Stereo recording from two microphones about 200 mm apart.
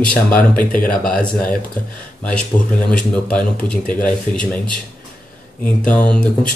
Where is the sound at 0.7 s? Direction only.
45° left (ahead or behind).